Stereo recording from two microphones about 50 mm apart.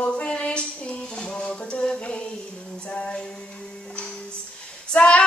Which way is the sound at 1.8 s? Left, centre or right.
Left.